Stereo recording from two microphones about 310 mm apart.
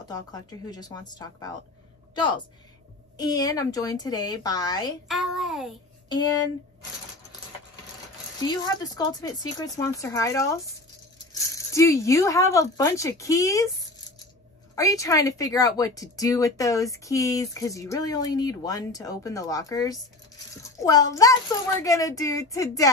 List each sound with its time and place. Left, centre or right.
0.0 s a woman's voice: centre
5.0 s a sound: centre
6.0 s a woman's voice: centre
8.5 s a woman's voice: centre
14.8 s a woman's voice: centre